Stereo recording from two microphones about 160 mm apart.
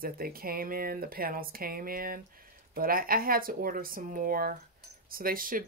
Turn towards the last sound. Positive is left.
turn(degrees=-60)  # may be behind; listen again after turning